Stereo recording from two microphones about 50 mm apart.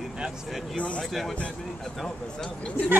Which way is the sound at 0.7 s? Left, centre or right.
Left.